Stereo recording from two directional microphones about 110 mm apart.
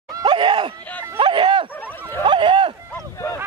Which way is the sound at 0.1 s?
40° right (ahead or behind).